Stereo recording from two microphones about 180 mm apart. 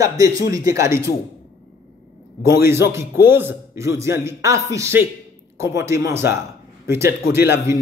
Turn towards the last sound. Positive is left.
turn(degrees=-15)  # may be behind; listen again after turning